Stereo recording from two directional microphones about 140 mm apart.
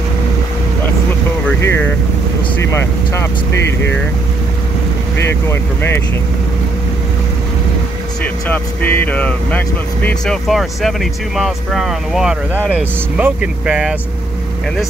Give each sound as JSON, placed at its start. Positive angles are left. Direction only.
{"t": 1.6, "sound": "speech", "side_deg": 15}
{"t": 5.2, "sound": "speech", "side_deg": 15}
{"t": 8.2, "sound": "speech", "side_deg": 15}